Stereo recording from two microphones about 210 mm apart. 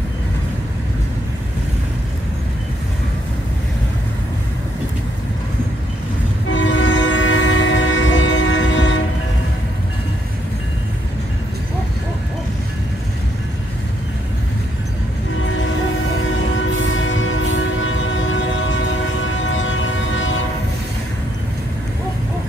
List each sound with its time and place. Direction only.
6.5 s train: 60° left (ahead or behind)
16.5 s train: 65° left (ahead or behind)
19.4 s music: 65° left (ahead or behind)